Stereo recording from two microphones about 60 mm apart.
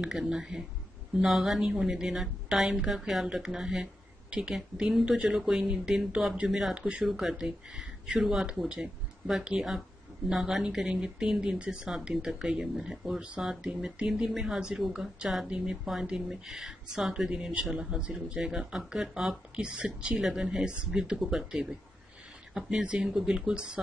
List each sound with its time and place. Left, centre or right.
0.0 s speech: centre
7.1 s speech: centre
7.3 s speech: centre
10.3 s speech: centre
20.2 s speech: centre